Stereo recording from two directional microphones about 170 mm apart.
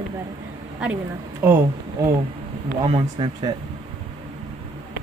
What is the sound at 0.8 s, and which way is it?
Speech, 5° right (ahead or behind).